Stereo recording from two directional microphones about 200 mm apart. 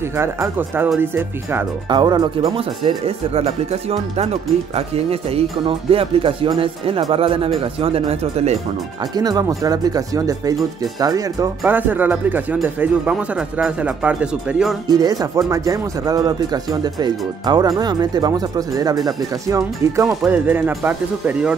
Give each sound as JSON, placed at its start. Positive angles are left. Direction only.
{"t": 0.1, "sound": "speech", "side_deg": -10}
{"t": 1.9, "sound": "speech", "side_deg": -20}
{"t": 9.1, "sound": "speech", "side_deg": -20}
{"t": 14.9, "sound": "speech", "side_deg": -20}
{"t": 20.1, "sound": "speech", "side_deg": -5}